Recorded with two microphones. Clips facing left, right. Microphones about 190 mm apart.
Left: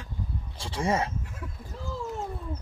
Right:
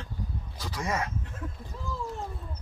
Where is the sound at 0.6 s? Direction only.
30° left (ahead or behind).